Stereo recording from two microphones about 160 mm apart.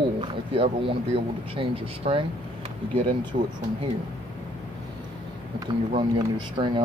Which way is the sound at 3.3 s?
40° right (ahead or behind).